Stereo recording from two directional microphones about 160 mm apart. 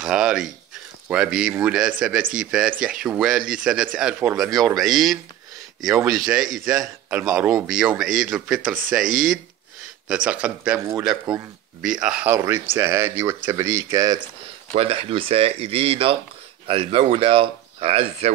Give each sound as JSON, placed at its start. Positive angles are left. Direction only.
{"t": 0.0, "sound": "a man's voice", "side_deg": -5}
{"t": 9.0, "sound": "speech", "side_deg": -55}
{"t": 10.0, "sound": "speech", "side_deg": -5}
{"t": 14.7, "sound": "speech", "side_deg": -35}